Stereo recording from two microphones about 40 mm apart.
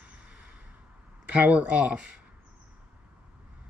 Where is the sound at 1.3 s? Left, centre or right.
Right.